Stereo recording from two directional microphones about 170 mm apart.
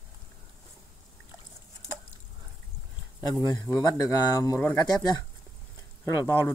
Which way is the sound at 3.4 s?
20° left (ahead or behind).